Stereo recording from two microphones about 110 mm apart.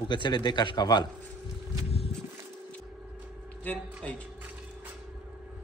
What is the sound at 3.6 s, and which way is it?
Speech, 10° left (ahead or behind).